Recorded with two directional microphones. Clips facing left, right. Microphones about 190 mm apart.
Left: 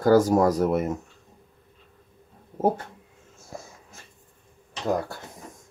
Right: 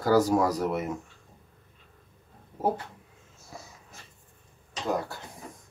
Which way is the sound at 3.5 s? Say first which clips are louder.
Left 6 dB; 50° left (ahead or behind).